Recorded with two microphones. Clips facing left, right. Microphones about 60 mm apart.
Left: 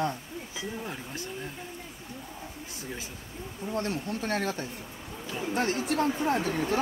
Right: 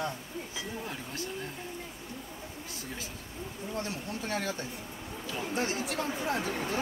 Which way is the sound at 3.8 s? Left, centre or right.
Left.